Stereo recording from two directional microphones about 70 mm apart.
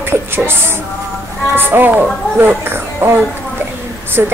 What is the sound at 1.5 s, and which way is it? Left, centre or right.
A woman's voice, right.